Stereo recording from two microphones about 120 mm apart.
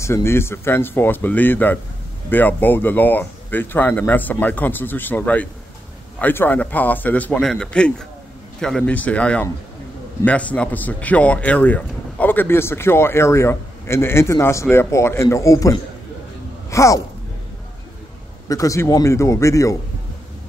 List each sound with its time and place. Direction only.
0.0 s speech: 20° left (ahead or behind)
18.5 s speech: 30° left (ahead or behind)